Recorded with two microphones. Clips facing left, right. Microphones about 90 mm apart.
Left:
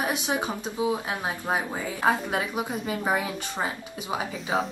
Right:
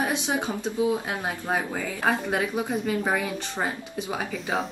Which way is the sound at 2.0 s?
20° left (ahead or behind).